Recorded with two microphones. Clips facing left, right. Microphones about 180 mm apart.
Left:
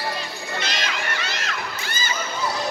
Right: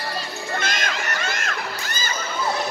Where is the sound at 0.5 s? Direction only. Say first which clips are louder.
Right 2 dB; 50° right (ahead or behind).